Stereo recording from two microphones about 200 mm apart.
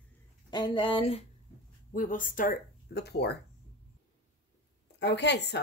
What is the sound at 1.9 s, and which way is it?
Speech, 40° left (ahead or behind).